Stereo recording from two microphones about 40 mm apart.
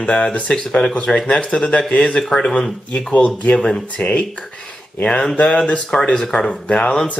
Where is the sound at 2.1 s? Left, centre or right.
Centre.